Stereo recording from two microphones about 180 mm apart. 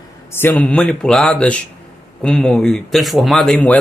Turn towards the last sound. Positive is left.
turn(degrees=5)  # may be behind; listen again after turning